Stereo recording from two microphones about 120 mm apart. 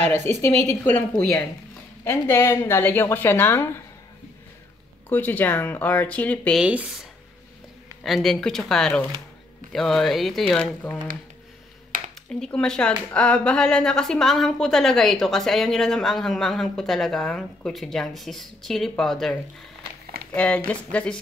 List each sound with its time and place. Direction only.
0.7 s speech: 15° left (ahead or behind)
2.0 s a woman's voice: 20° left (ahead or behind)
5.1 s speech: 15° left (ahead or behind)
6.6 s speech: 10° right (ahead or behind)
8.0 s speech: centre (ahead or behind)
12.3 s speech: 5° left (ahead or behind)
20.3 s speech: 10° left (ahead or behind)